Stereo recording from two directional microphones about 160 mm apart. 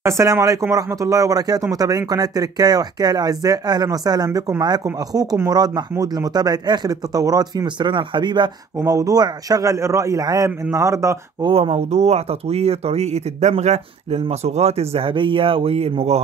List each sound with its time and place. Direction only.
0.0 s speech: 20° right (ahead or behind)
11.5 s speech: 40° right (ahead or behind)